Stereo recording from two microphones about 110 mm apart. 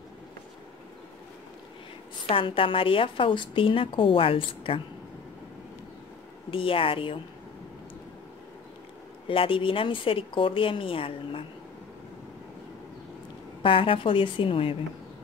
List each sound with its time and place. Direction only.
2.2 s a woman's voice: 55° left (ahead or behind)
6.5 s a woman's voice: 55° left (ahead or behind)
9.3 s a woman's voice: 55° left (ahead or behind)
13.6 s a woman's voice: 55° left (ahead or behind)